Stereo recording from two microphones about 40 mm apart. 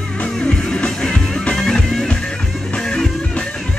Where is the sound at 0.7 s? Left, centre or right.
Left.